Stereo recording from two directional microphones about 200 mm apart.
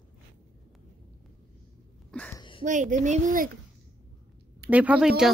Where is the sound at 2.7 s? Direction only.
40° right (ahead or behind).